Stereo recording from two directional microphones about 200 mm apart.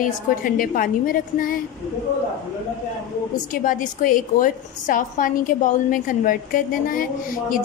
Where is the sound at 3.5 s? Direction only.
40° left (ahead or behind).